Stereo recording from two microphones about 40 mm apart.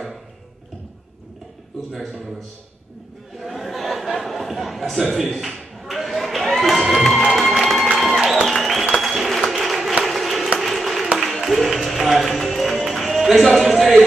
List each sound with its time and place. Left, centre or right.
1.9 s a man's voice: centre
3.3 s chuckle: centre
5.3 s a sound: centre
8.0 s music: centre
8.5 s applause: centre
11.1 s music: centre